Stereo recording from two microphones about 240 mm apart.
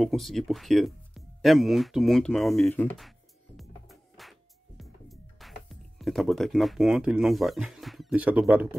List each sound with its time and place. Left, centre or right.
0.0 s music: centre